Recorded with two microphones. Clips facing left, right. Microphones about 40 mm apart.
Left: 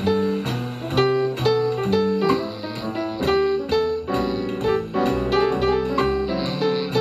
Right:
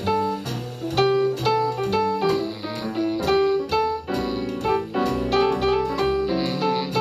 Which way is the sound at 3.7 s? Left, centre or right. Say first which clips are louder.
Left 2 dB; left.